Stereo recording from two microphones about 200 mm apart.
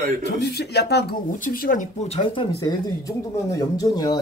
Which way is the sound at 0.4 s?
55° left (ahead or behind).